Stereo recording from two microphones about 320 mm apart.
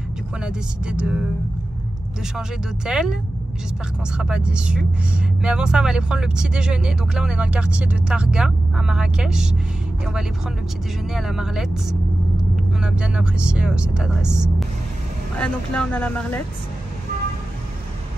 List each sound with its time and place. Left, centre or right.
0.4 s speech: centre
2.3 s speech: centre
4.2 s speech: centre
11.1 s speech: centre